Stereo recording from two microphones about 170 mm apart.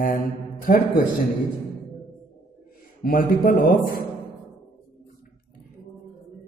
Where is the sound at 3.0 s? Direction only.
55° left (ahead or behind).